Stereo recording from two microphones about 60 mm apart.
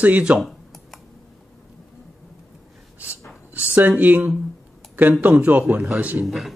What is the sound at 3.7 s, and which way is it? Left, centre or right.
Speech, right.